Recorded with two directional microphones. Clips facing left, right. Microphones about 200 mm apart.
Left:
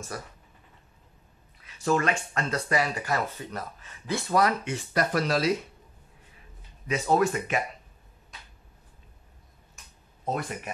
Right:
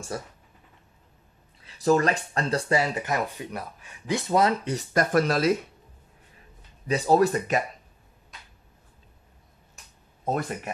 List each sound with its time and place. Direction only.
0.1 s speech: 25° right (ahead or behind)
1.6 s speech: 35° right (ahead or behind)
4.6 s speech: 45° right (ahead or behind)
6.9 s speech: 35° right (ahead or behind)
10.2 s speech: 50° right (ahead or behind)